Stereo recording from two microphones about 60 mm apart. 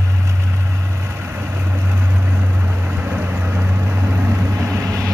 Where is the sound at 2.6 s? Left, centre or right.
Right.